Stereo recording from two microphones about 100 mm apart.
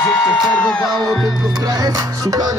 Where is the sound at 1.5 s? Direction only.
40° right (ahead or behind).